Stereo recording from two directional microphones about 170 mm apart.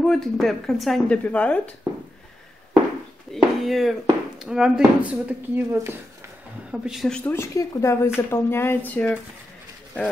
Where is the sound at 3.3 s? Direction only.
Centre (ahead or behind); by 5.9 s 15° right (ahead or behind).